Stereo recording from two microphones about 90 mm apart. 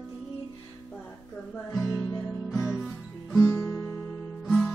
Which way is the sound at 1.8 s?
35° left (ahead or behind).